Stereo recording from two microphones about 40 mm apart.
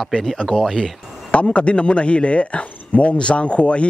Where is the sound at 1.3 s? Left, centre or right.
Left.